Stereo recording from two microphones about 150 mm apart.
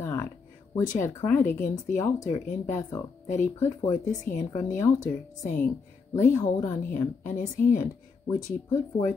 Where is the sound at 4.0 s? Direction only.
60° left (ahead or behind).